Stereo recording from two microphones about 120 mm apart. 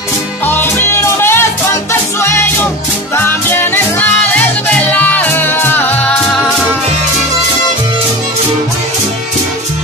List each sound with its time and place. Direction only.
0.5 s music: 15° left (ahead or behind)